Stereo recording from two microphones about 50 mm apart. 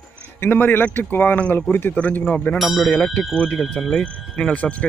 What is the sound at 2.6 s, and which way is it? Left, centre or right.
Speech, centre.